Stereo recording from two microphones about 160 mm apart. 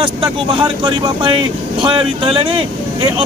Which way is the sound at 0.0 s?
30° right (ahead or behind).